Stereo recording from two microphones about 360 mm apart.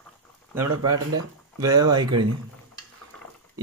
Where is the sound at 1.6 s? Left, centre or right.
Centre.